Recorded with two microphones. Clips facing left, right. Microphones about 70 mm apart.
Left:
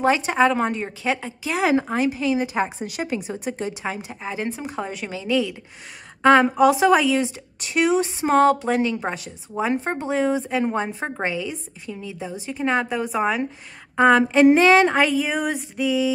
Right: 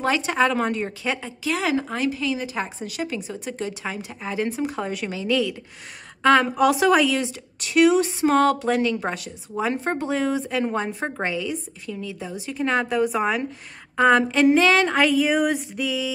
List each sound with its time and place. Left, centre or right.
0.0 s speech: centre
1.7 s a woman's voice: left; by 16.1 s centre